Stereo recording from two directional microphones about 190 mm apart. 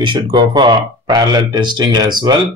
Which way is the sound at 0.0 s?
25° right (ahead or behind).